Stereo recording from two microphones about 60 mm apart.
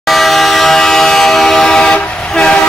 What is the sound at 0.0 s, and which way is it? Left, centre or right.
Vehicle horn, centre.